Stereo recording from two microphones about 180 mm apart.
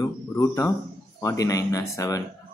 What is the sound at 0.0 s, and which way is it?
Speech, 15° left (ahead or behind).